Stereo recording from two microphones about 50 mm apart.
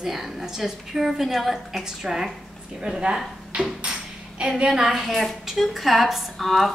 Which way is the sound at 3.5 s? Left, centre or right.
Centre.